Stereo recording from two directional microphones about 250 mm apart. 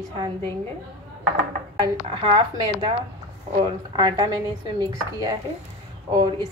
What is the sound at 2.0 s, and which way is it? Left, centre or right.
Speech, right.